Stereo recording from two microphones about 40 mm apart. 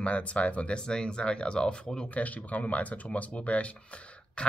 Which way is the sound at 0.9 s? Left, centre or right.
Left.